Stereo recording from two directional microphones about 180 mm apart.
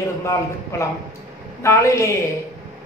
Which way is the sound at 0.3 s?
15° left (ahead or behind).